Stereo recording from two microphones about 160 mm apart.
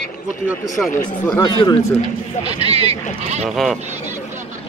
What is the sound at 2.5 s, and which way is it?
Speech, 40° right (ahead or behind).